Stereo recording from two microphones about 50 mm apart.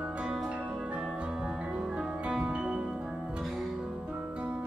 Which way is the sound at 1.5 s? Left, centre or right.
Centre.